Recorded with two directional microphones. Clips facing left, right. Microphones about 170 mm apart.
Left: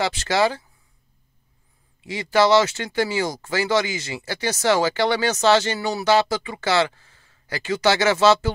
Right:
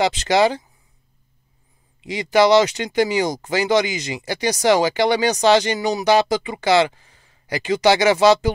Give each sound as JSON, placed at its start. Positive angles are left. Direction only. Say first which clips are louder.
{"t": 0.0, "sound": "speech", "louder": "right 4 dB", "side_deg": -20}
{"t": 2.0, "sound": "speech", "louder": "right 3 dB", "side_deg": -15}